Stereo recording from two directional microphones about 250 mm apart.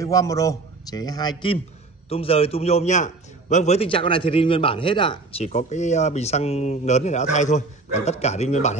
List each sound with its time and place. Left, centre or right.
0.0 s a man's voice: centre